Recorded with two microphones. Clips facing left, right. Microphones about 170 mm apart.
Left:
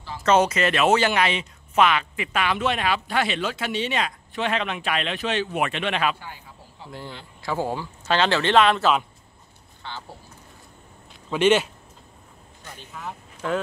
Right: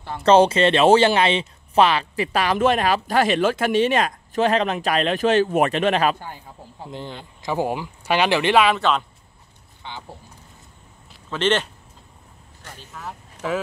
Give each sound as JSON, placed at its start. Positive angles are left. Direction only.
{"t": 0.2, "sound": "speech", "side_deg": -30}
{"t": 6.9, "sound": "speech", "side_deg": -20}
{"t": 9.8, "sound": "speech", "side_deg": -15}
{"t": 11.2, "sound": "speech", "side_deg": 10}
{"t": 12.9, "sound": "speech", "side_deg": 0}